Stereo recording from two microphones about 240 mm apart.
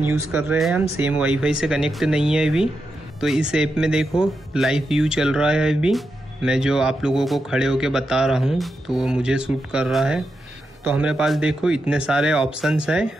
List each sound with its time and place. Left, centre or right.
0.3 s speech: centre